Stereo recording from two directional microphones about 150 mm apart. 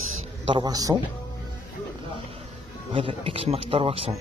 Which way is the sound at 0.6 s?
25° right (ahead or behind).